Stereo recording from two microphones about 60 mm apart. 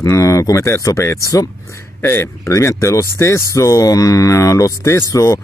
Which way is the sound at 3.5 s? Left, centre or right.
Left.